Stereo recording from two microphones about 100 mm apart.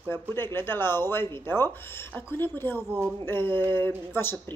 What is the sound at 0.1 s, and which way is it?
Speech, 25° left (ahead or behind).